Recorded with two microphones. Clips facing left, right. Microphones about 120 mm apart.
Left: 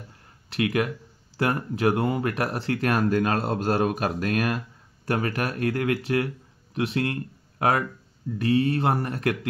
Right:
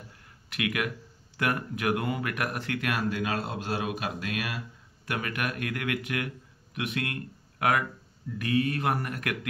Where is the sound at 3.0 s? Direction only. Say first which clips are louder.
Left 7 dB; 50° left (ahead or behind).